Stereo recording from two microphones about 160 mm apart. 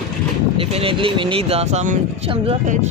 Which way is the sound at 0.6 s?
35° right (ahead or behind).